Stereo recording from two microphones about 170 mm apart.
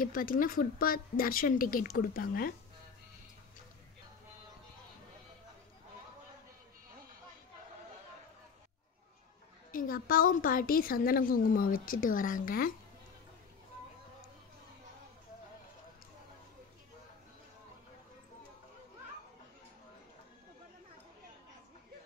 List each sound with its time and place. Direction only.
0.0 s a woman's voice: 55° left (ahead or behind)
9.7 s a woman's voice: 55° left (ahead or behind)